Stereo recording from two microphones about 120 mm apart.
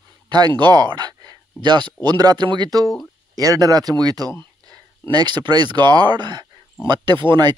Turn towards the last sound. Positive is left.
turn(degrees=-40)  # may be behind; listen again after turning